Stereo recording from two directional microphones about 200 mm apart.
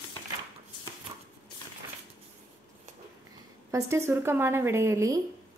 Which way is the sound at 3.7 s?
15° right (ahead or behind).